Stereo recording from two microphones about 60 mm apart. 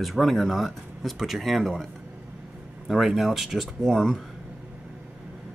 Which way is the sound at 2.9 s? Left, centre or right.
Centre.